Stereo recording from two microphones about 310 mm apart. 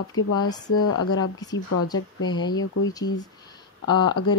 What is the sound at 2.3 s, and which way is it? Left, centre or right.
Speech, centre.